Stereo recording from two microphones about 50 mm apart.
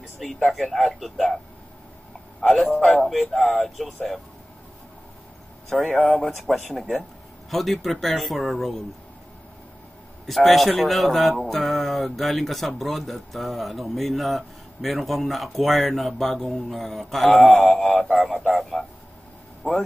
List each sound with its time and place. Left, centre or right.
0.2 s speech: centre
2.5 s speech: centre
5.9 s mantra: centre
6.1 s speech: centre
10.2 s speech: centre
17.3 s mantra: left
17.6 s speech: centre
18.4 s a sound: centre
19.6 s speech: left